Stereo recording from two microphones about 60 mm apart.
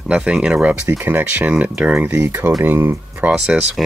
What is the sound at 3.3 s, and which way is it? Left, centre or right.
Speech, centre.